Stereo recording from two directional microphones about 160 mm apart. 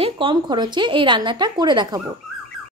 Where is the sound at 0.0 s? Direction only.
30° right (ahead or behind).